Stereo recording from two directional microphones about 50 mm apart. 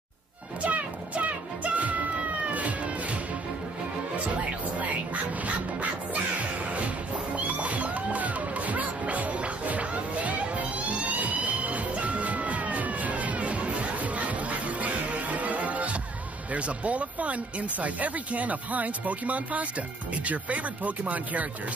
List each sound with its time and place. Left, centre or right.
0.6 s music: right
2.5 s cat: right
4.7 s music: right
16.5 s speech: right